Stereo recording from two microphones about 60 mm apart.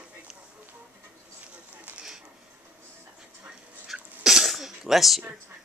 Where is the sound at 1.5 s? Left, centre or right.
Centre.